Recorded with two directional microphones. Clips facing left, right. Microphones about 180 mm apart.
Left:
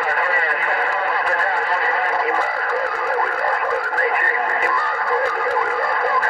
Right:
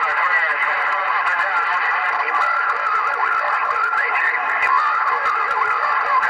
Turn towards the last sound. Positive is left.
turn(degrees=40)  # may be behind; listen again after turning